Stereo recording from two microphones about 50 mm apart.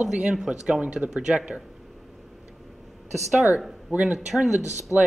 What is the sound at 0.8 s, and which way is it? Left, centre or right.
Speech, right.